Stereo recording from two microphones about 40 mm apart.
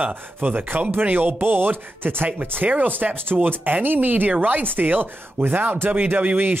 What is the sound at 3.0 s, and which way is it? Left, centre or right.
Speech, right.